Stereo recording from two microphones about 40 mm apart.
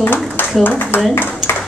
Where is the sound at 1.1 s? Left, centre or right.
Left.